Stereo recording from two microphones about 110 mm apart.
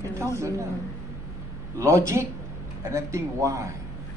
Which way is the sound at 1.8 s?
25° right (ahead or behind).